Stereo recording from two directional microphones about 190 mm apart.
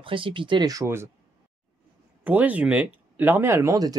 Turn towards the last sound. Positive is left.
turn(degrees=-20)  # may be behind; listen again after turning